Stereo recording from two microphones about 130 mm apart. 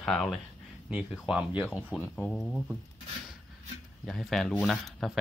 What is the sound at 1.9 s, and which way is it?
Speech, centre (ahead or behind).